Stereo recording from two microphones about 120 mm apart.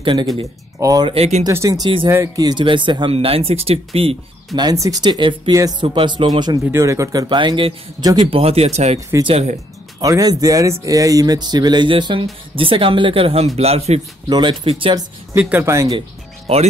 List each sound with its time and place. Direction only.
0.0 s speech: 45° right (ahead or behind)
0.7 s speech: 30° right (ahead or behind)
1.1 s speech: 60° right (ahead or behind)
1.5 s speech: 30° right (ahead or behind); by 4.2 s 55° right (ahead or behind)
4.6 s speech: 30° right (ahead or behind)
6.7 s speech: 25° right (ahead or behind); by 8.1 s 40° right (ahead or behind)
8.3 s speech: 55° right (ahead or behind)
9.9 s speech: 30° right (ahead or behind); by 14.0 s 60° right (ahead or behind)
14.3 s speech: 40° right (ahead or behind)
15.3 s speech: 20° right (ahead or behind)
16.5 s speech: 55° right (ahead or behind)